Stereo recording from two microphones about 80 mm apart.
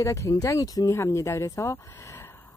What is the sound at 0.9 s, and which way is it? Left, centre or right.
Speech, left.